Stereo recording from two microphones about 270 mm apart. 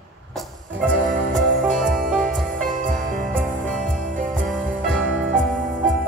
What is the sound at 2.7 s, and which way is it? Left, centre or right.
Music, right.